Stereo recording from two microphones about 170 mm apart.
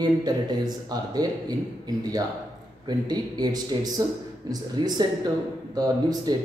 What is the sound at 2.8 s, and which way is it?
Speech, 25° right (ahead or behind).